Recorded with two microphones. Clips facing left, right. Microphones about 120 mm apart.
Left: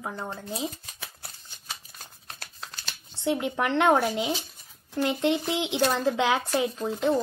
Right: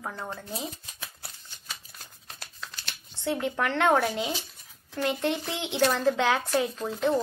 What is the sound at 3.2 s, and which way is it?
Speech, 15° left (ahead or behind).